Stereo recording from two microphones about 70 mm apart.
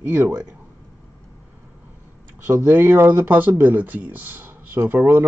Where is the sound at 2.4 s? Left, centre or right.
Right.